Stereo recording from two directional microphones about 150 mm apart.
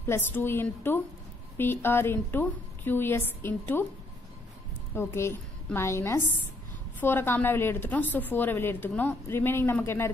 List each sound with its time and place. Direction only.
0.0 s a woman's voice: 15° left (ahead or behind)
4.9 s a woman's voice: 20° left (ahead or behind)